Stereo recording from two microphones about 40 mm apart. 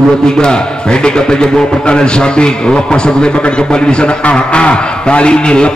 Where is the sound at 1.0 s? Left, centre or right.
Left.